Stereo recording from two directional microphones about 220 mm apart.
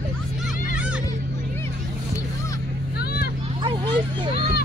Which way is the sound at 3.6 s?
20° right (ahead or behind).